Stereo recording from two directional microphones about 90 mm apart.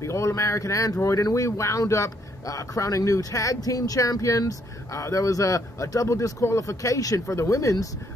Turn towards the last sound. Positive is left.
turn(degrees=40)  # may be behind; listen again after turning